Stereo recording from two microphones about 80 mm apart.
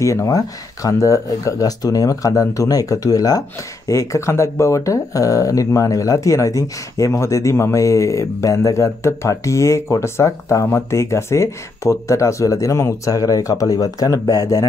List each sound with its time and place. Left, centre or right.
0.0 s speech: left